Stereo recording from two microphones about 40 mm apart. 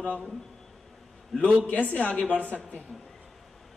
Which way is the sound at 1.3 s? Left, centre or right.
Centre.